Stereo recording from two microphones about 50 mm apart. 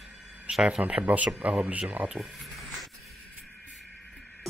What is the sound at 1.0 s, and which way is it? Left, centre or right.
Speech, right.